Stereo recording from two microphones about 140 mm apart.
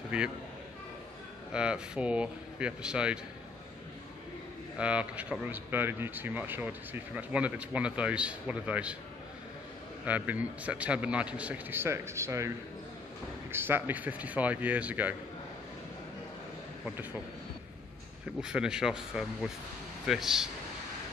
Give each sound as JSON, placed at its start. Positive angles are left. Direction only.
{"t": 0.1, "sound": "speech", "side_deg": -5}
{"t": 1.5, "sound": "speech", "side_deg": -5}
{"t": 4.7, "sound": "speech", "side_deg": -10}
{"t": 10.0, "sound": "speech", "side_deg": -10}
{"t": 18.4, "sound": "speech", "side_deg": -5}